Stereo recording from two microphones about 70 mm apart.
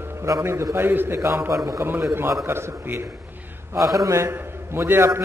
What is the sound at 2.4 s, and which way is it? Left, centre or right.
Speech, right.